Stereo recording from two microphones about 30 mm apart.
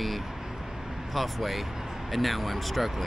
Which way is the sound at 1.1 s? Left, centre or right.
Centre.